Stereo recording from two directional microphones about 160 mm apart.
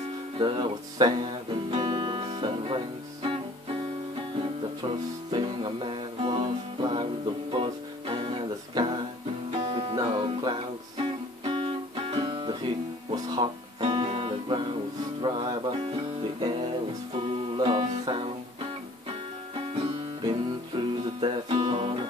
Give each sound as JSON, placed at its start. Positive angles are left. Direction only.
{"t": 0.4, "sound": "music", "side_deg": -30}
{"t": 5.3, "sound": "music", "side_deg": -30}
{"t": 17.6, "sound": "music", "side_deg": -30}
{"t": 20.2, "sound": "music", "side_deg": -30}